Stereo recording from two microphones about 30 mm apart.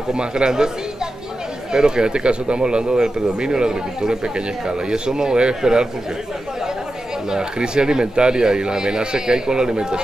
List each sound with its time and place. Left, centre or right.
0.1 s speech: right
1.7 s speech: right
7.2 s speech: right